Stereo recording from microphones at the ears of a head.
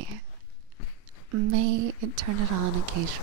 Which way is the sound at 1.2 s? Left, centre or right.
Right.